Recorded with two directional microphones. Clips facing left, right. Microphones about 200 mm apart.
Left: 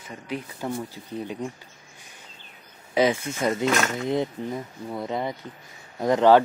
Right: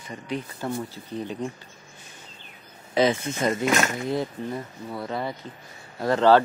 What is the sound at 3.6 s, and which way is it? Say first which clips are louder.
Speech: even; 10° right (ahead or behind).